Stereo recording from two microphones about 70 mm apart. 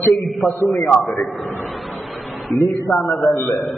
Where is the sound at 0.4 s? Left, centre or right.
Left.